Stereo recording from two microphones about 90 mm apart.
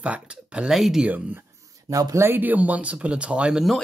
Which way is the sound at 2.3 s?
20° right (ahead or behind).